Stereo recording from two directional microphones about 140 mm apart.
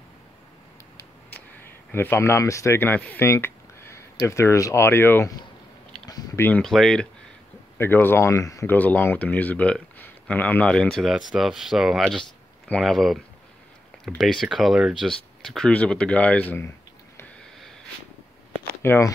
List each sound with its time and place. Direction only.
1.9 s speech: 15° left (ahead or behind)
6.0 s a sound: 25° left (ahead or behind)
6.6 s speech: 5° left (ahead or behind)
7.7 s speech: 15° left (ahead or behind)
18.8 s speech: 20° left (ahead or behind)